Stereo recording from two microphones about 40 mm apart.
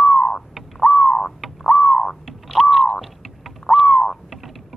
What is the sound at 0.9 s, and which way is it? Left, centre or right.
Crow, left.